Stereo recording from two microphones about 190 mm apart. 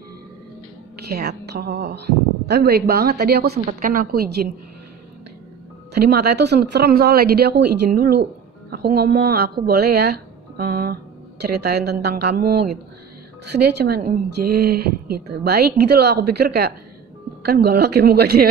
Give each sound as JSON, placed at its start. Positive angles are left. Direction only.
{"t": 1.1, "sound": "a woman's voice", "side_deg": -60}
{"t": 6.3, "sound": "a woman's voice", "side_deg": -60}